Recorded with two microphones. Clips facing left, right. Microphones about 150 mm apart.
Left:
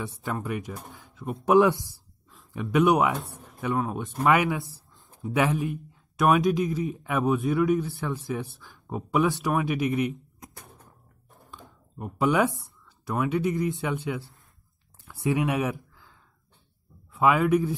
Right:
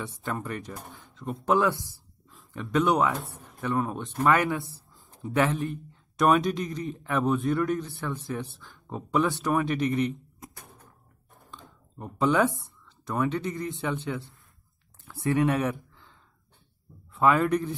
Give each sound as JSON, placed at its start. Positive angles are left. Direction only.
{"t": 0.0, "sound": "speech", "side_deg": 0}
{"t": 1.5, "sound": "speech", "side_deg": 15}
{"t": 3.7, "sound": "speech", "side_deg": 0}
{"t": 11.5, "sound": "speech", "side_deg": 5}
{"t": 15.0, "sound": "speech", "side_deg": 15}
{"t": 15.6, "sound": "a sound", "side_deg": 0}
{"t": 17.1, "sound": "speech", "side_deg": 5}